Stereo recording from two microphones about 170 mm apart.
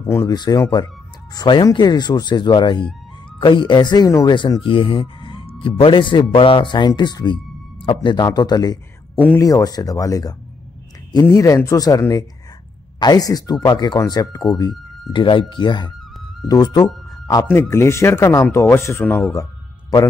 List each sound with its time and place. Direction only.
0.2 s speech: 25° left (ahead or behind)